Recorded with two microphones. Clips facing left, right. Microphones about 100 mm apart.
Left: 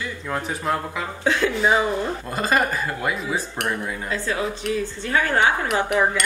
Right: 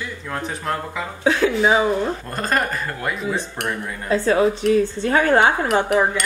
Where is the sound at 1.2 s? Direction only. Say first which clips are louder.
Right 3 dB; 5° right (ahead or behind).